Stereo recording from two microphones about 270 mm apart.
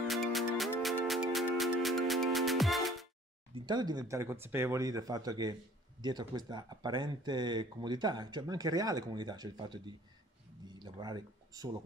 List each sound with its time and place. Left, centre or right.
0.0 s music: centre
3.5 s speech: centre
10.8 s a sound: centre